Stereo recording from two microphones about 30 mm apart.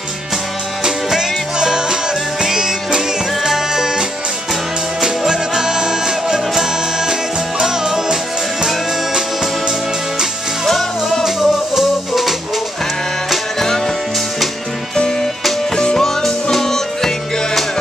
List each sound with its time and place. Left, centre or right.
0.8 s music: centre
5.0 s music: centre
7.6 s music: centre
10.7 s music: centre
11.2 s music: centre
15.7 s music: left
16.0 s music: centre